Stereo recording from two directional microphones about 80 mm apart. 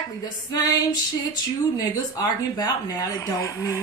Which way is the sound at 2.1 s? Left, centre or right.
Left.